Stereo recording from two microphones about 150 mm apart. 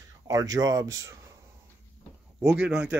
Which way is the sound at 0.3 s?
25° right (ahead or behind).